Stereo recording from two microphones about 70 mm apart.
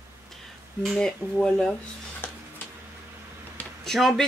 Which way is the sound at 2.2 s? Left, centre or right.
Left.